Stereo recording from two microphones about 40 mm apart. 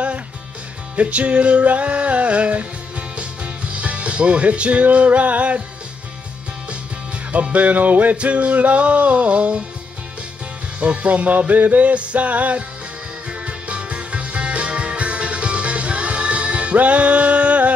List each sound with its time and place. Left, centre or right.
0.9 s music: right
7.5 s music: right
10.8 s music: right